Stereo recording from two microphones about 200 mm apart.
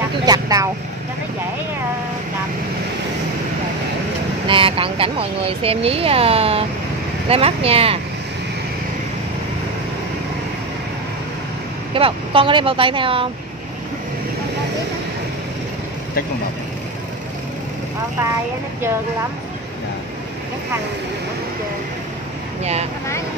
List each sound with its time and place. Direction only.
0.2 s vehicle: 20° right (ahead or behind)
4.5 s speech: 25° right (ahead or behind)
11.9 s speech: 25° right (ahead or behind)
22.6 s speech: 30° right (ahead or behind)